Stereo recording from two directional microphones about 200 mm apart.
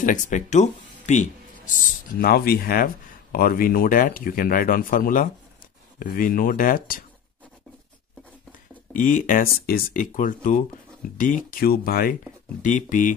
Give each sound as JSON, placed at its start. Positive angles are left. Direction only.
{"t": 0.0, "sound": "speech", "side_deg": 40}
{"t": 1.7, "sound": "speech", "side_deg": 50}
{"t": 8.9, "sound": "speech", "side_deg": 40}